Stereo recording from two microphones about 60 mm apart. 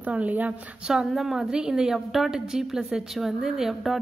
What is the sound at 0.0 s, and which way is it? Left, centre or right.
Speech, right.